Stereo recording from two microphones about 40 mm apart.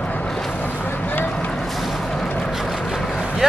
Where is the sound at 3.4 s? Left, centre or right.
Centre.